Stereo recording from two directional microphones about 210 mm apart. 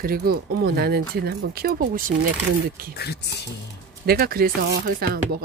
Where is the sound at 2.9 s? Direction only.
50° left (ahead or behind).